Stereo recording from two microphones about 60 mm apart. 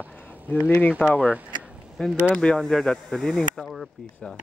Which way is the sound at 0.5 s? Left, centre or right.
Left.